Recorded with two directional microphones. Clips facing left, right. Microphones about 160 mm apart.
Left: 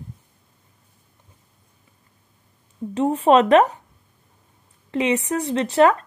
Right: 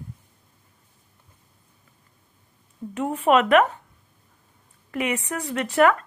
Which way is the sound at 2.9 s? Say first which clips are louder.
Left 4 dB; 30° left (ahead or behind).